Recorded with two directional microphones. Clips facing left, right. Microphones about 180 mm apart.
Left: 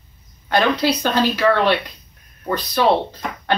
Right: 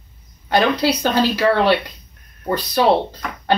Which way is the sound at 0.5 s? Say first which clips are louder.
Right 1 dB; 10° right (ahead or behind).